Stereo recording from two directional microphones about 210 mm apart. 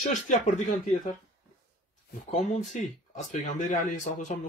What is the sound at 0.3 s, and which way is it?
Speech, 35° left (ahead or behind).